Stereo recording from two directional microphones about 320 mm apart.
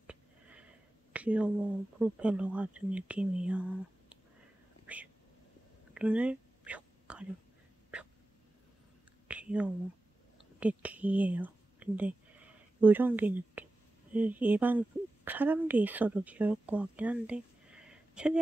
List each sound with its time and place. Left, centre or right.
0.0 s sniff: centre
1.1 s speech: centre
4.9 s a sound: centre
5.9 s whispering: centre
9.3 s whispering: centre
14.1 s speech: centre